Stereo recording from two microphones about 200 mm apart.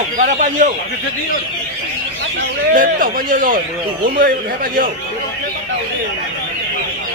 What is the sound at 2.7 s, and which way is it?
A man's voice, 45° right (ahead or behind).